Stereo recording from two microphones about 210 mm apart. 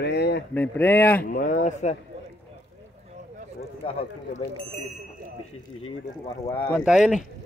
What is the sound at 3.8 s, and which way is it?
Speech, 25° left (ahead or behind).